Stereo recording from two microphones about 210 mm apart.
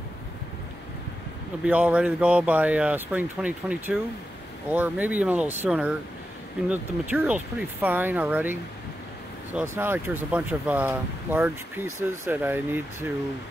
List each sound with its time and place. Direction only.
1.6 s speech: 5° right (ahead or behind)